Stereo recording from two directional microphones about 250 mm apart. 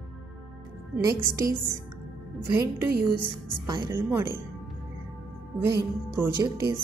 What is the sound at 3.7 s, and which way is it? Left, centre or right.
Speech, centre.